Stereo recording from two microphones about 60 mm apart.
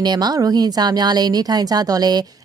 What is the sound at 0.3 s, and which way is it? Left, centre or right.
A woman's voice, right.